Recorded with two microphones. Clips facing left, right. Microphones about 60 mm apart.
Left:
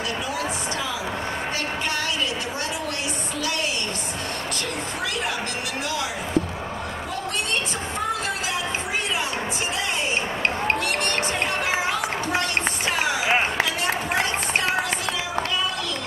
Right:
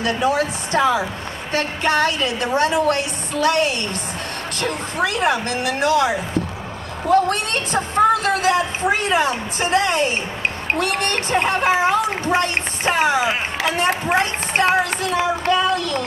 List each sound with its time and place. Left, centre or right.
0.0 s a woman's voice: right
5.0 s a woman's voice: right
10.8 s a woman's voice: right